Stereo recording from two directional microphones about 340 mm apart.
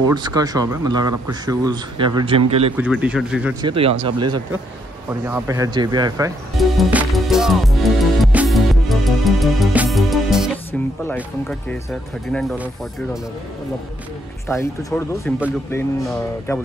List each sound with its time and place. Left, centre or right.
0.1 s speech: centre
2.8 s speech: centre
3.7 s speech: centre
5.2 s music: centre
11.1 s speech: centre
14.5 s speech: centre